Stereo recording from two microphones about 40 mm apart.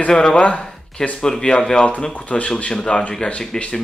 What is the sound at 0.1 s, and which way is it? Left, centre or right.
Speech, centre.